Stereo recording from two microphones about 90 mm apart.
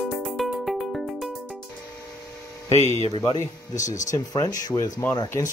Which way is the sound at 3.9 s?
40° left (ahead or behind).